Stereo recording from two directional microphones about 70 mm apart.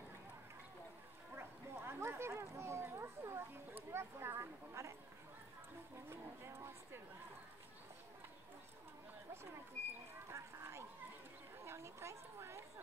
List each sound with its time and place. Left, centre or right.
1.3 s speech: right
6.0 s speech: right
10.3 s speech: right
11.6 s a sound: right